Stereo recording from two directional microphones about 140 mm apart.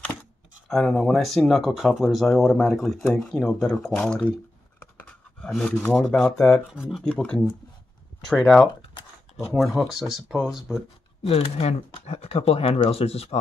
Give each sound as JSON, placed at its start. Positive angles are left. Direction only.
{"t": 0.7, "sound": "speech", "side_deg": 5}
{"t": 5.4, "sound": "speech", "side_deg": 5}
{"t": 11.2, "sound": "speech", "side_deg": 45}